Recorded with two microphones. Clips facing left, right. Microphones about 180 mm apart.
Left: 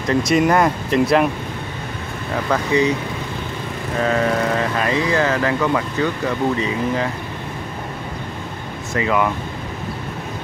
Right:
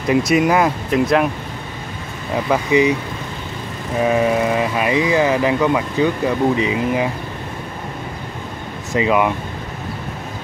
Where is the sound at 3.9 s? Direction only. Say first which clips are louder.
Right 3 dB; 15° right (ahead or behind).